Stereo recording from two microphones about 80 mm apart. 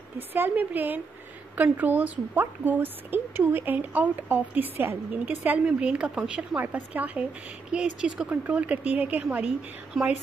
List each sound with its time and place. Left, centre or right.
0.3 s a woman's voice: right
9.9 s speech: centre